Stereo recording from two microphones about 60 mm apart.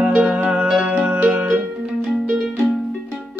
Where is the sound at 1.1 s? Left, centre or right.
Right.